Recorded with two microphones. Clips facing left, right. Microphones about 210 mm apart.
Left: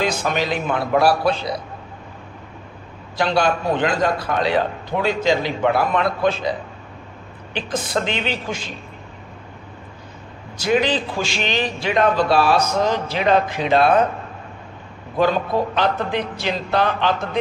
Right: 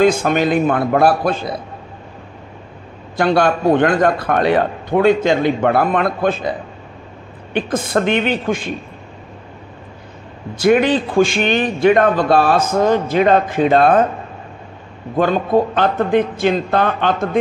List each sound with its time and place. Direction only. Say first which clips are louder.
0.0 s a man's voice: right 8 dB; 50° right (ahead or behind)
3.2 s a man's voice: right 4 dB; 55° right (ahead or behind)
7.5 s a man's voice: right 6 dB; 55° right (ahead or behind)
10.6 s a man's voice: right 6 dB; 55° right (ahead or behind)
15.1 s a man's voice: right 4 dB; 50° right (ahead or behind)